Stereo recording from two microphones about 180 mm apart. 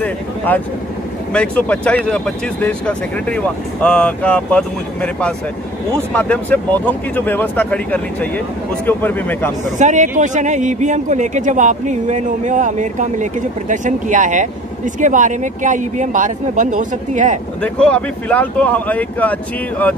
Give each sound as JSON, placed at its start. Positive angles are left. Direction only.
{"t": 1.3, "sound": "speech", "side_deg": 5}
{"t": 9.8, "sound": "speech", "side_deg": -45}
{"t": 17.6, "sound": "speech", "side_deg": 5}